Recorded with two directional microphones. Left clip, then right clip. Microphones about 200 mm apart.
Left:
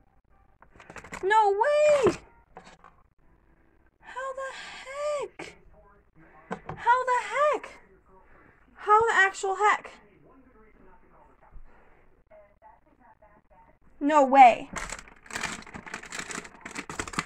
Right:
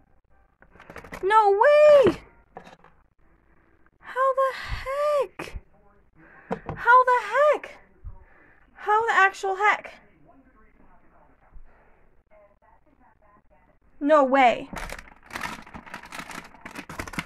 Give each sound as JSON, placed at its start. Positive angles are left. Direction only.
{"t": 1.2, "sound": "speech", "side_deg": -35}
{"t": 4.0, "sound": "gasp", "side_deg": -30}
{"t": 6.8, "sound": "a sound", "side_deg": -30}
{"t": 8.7, "sound": "a woman's voice", "side_deg": -25}
{"t": 13.9, "sound": "a woman's voice", "side_deg": -10}